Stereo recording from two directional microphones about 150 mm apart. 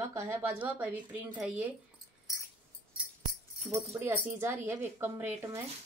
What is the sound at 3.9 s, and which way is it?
A woman's voice, 15° right (ahead or behind).